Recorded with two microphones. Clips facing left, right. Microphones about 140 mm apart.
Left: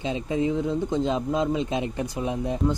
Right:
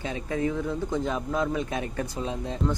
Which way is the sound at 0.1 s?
20° left (ahead or behind).